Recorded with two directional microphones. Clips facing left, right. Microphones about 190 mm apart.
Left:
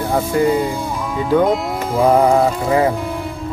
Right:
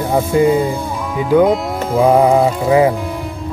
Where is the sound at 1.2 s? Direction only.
5° right (ahead or behind).